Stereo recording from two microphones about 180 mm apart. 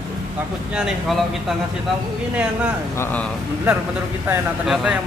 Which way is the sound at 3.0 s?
10° left (ahead or behind).